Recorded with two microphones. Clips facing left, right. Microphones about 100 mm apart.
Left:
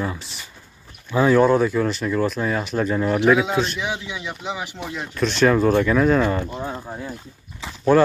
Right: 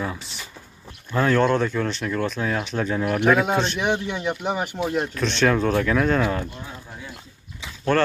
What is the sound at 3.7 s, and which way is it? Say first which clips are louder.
A man's voice: right 4 dB; 55° right (ahead or behind).